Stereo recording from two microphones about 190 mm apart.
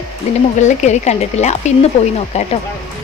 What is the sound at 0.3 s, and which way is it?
Speech, 35° left (ahead or behind).